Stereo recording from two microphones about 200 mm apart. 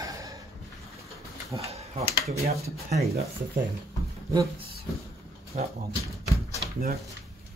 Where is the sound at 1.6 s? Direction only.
30° right (ahead or behind).